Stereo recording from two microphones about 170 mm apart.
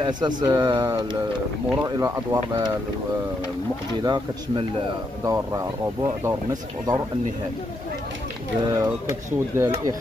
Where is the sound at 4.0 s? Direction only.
25° right (ahead or behind).